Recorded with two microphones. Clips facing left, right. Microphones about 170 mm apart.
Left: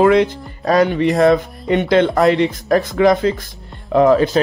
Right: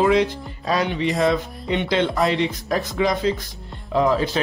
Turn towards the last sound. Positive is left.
turn(degrees=60)  # may be behind; listen again after turning